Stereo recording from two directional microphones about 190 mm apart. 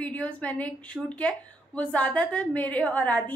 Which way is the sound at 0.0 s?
5° left (ahead or behind).